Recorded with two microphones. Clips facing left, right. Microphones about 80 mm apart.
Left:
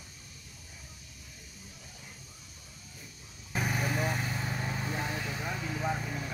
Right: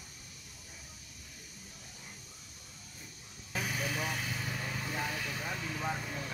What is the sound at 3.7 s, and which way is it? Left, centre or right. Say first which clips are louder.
Vehicle: left 5 dB; left.